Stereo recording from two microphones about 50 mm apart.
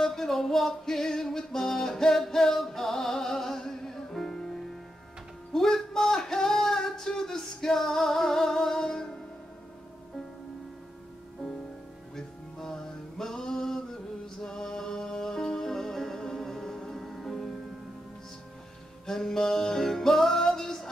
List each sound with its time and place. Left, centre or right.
0.0 s music: centre
5.5 s a sound: centre
12.2 s music: centre
19.0 s music: centre